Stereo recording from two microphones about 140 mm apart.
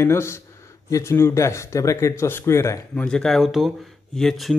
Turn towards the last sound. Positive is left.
turn(degrees=0)  # may be behind; listen again after turning